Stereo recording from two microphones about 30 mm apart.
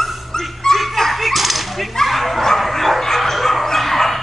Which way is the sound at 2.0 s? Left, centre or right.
Centre.